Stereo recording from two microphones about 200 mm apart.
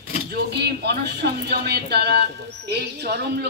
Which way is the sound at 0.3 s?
55° right (ahead or behind).